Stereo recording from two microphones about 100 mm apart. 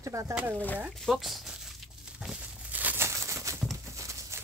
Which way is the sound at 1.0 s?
Centre (ahead or behind).